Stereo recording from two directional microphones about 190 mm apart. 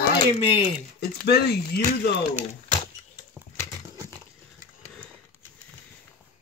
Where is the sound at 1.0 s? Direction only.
55° left (ahead or behind).